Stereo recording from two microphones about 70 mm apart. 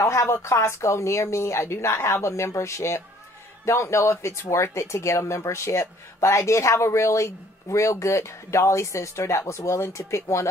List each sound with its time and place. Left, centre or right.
0.0 s speech: left